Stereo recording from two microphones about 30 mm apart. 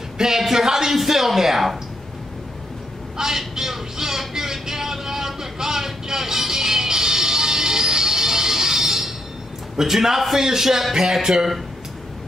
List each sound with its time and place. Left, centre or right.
0.2 s speech: centre
3.2 s vehicle: centre
9.8 s speech: centre